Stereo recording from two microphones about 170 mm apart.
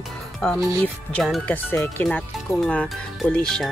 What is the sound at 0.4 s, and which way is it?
Speech, 5° left (ahead or behind).